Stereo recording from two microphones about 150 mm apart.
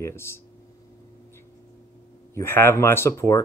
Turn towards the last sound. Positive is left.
turn(degrees=20)  # may be behind; listen again after turning